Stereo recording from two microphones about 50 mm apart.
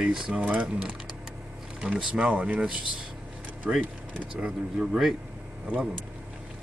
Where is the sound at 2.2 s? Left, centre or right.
Right.